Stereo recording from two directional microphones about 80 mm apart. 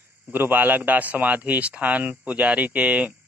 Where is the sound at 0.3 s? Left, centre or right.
Right.